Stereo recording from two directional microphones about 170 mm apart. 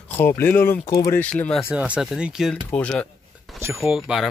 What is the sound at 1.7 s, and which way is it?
Speech, 5° right (ahead or behind).